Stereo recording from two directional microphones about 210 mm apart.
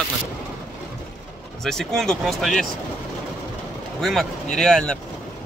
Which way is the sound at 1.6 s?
Centre (ahead or behind).